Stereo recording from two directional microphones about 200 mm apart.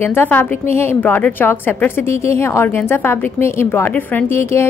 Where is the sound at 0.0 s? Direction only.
10° left (ahead or behind).